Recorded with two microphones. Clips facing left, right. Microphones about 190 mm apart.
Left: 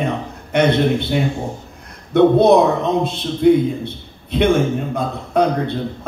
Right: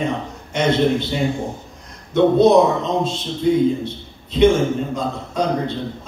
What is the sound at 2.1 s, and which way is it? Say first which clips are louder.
A man's voice: left 1 dB; 60° left (ahead or behind).